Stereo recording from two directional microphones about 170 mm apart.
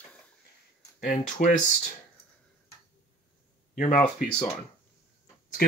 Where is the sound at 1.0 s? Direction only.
55° left (ahead or behind).